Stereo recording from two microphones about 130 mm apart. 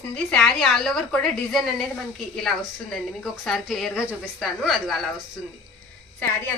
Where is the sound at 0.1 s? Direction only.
5° left (ahead or behind).